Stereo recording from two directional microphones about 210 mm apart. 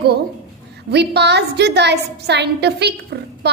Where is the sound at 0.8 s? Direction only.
55° right (ahead or behind).